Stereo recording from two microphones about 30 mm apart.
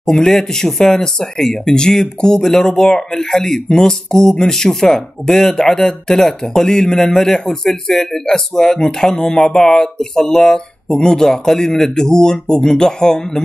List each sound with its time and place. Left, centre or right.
0.0 s speech: left